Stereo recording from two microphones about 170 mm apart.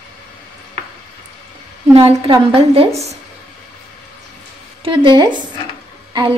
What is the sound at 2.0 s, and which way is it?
Speech, 35° right (ahead or behind).